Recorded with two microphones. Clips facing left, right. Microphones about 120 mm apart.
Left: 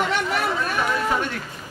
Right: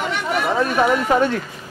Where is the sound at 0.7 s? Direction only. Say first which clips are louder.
Right 8 dB; 65° right (ahead or behind).